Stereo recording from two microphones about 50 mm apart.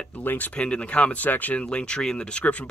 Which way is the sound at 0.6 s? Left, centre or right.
Left.